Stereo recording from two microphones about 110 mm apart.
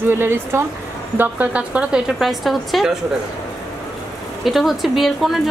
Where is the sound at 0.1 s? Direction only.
20° right (ahead or behind); by 3.0 s centre (ahead or behind).